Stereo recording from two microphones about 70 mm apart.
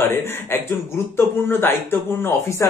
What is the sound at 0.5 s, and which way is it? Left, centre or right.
Speech, left.